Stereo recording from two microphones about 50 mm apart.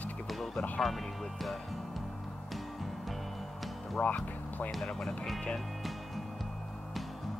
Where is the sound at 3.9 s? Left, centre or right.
Left.